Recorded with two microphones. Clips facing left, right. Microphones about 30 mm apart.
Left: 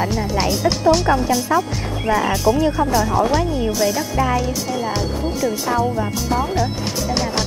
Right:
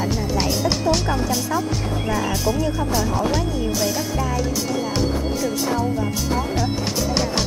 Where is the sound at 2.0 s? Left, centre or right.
Left.